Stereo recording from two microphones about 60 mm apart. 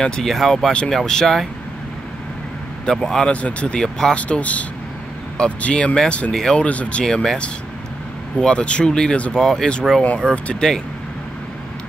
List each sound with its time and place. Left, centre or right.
0.0 s speech: centre
2.8 s speech: centre
3.3 s speech: left
4.2 s speech: left
6.3 s speech: centre
6.6 s speech: left